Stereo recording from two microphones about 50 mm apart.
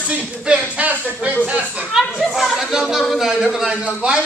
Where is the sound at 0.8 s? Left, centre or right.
Right.